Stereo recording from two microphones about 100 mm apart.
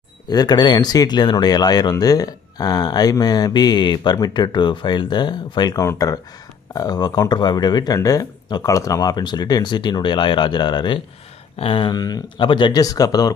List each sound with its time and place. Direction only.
0.3 s speech: 45° left (ahead or behind)
11.5 s a sound: 60° left (ahead or behind)
11.9 s speech: 40° left (ahead or behind)